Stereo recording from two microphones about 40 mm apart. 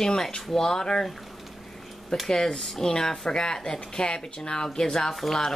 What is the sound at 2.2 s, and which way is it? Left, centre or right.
Speech, centre.